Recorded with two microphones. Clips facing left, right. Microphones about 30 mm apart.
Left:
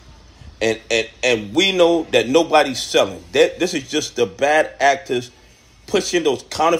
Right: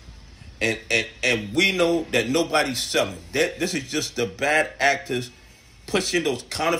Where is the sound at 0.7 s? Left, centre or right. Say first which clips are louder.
Left 4 dB; right; by 3.0 s centre.